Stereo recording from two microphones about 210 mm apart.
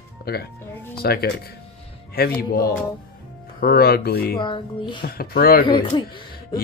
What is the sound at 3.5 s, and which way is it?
Speech, 45° left (ahead or behind).